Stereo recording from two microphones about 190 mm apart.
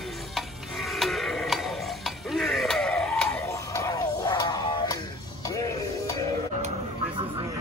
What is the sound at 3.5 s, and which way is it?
Music, 15° left (ahead or behind).